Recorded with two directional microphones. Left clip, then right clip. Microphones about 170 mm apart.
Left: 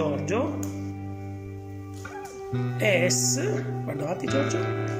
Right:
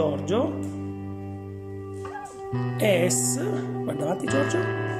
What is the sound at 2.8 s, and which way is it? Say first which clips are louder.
Speech: right 1 dB; 15° right (ahead or behind).